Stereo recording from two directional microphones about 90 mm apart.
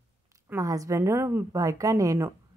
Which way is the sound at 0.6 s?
40° right (ahead or behind).